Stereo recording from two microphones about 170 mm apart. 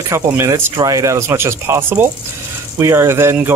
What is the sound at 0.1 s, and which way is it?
Speech, 15° right (ahead or behind).